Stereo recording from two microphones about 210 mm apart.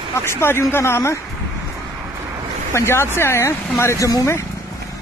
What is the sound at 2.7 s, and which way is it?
Speech, 10° left (ahead or behind).